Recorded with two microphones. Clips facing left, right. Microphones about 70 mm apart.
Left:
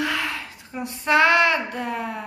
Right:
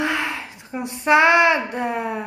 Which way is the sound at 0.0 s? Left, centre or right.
Right.